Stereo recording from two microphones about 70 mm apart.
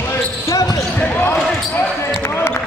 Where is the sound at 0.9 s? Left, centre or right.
Left.